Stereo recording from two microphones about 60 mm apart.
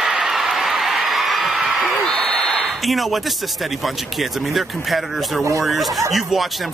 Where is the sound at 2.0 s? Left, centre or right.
Centre.